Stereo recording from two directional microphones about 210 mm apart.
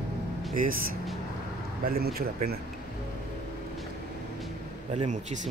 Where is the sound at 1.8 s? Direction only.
45° right (ahead or behind).